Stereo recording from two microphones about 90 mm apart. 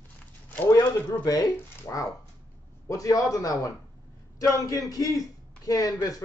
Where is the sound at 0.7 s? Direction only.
45° left (ahead or behind).